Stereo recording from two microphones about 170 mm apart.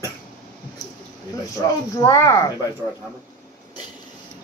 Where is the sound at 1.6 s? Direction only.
20° left (ahead or behind).